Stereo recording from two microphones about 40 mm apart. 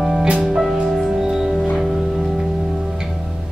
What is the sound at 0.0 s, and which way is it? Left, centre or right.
Music, centre.